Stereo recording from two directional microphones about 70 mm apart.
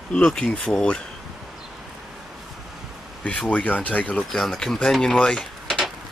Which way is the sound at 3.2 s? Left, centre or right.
Centre.